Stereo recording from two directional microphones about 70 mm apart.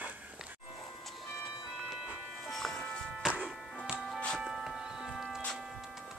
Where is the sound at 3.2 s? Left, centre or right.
Centre.